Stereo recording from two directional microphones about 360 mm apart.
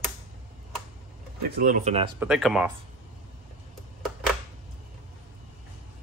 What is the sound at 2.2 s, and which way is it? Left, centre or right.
Speech, centre.